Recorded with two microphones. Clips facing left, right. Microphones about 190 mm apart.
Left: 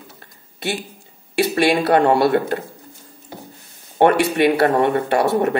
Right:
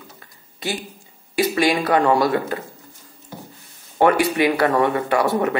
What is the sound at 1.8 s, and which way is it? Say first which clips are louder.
Speech: left 3 dB; 30° left (ahead or behind).